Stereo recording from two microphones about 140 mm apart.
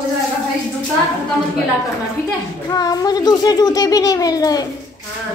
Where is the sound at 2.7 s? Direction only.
25° left (ahead or behind).